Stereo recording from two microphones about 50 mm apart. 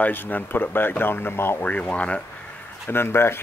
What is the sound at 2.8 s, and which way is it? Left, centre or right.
Speech, left.